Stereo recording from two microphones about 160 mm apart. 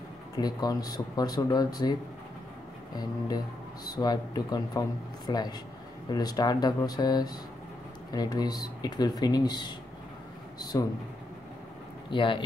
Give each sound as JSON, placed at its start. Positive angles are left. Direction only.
{"t": 0.4, "sound": "speech", "side_deg": 25}
{"t": 3.0, "sound": "speech", "side_deg": 25}
{"t": 12.1, "sound": "speech", "side_deg": 30}